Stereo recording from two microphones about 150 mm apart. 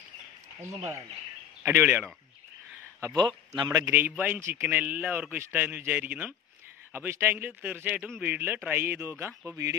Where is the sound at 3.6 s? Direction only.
25° right (ahead or behind).